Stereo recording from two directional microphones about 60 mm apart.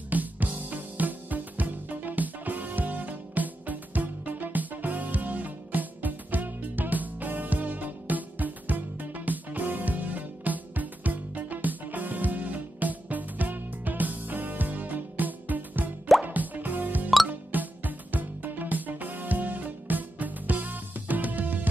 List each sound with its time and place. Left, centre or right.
0.1 s music: right